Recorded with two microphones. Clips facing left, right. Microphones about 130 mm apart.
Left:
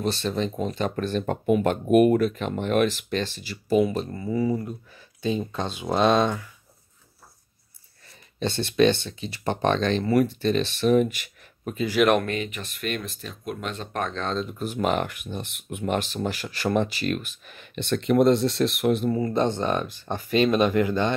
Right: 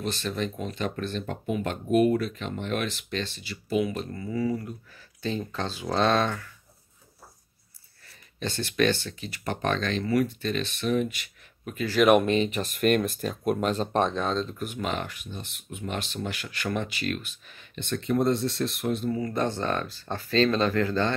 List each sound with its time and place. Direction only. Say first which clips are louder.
0.0 s speech: left 4 dB; 30° left (ahead or behind)
8.4 s speech: left 5 dB; 25° left (ahead or behind); by 11.1 s 40° left (ahead or behind)
12.0 s speech: even; 5° left (ahead or behind)
12.4 s speech: right 8 dB; 40° right (ahead or behind)
14.8 s speech: left 8 dB; 55° left (ahead or behind)
17.6 s speech: left 5 dB; 75° left (ahead or behind)
19.0 s speech: left 4 dB; 35° left (ahead or behind)
19.3 s speech: left 4 dB; 20° left (ahead or behind)